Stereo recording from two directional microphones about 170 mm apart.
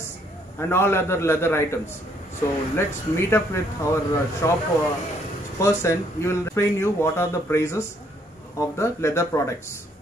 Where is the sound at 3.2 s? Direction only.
15° left (ahead or behind).